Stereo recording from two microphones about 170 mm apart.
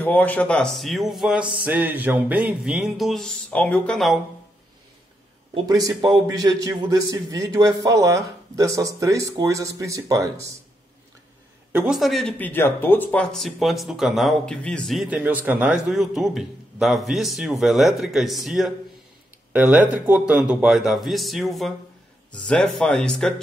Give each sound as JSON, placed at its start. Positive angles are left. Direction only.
{"t": 0.0, "sound": "speech", "side_deg": 10}
{"t": 5.5, "sound": "a man's voice", "side_deg": -25}
{"t": 11.7, "sound": "speech", "side_deg": -5}